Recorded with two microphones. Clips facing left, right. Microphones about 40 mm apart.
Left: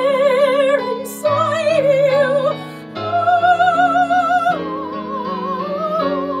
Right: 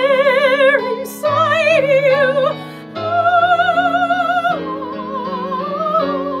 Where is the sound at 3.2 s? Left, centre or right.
Right.